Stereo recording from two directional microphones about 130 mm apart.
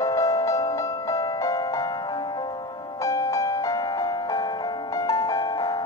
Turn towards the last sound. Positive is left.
turn(degrees=30)  # may be behind; listen again after turning